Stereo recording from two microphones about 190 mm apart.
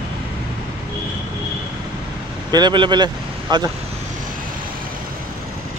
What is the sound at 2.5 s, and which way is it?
Speech, 25° right (ahead or behind).